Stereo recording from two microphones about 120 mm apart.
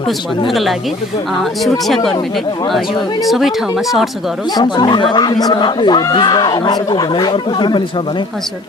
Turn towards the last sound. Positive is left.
turn(degrees=40)  # may be behind; listen again after turning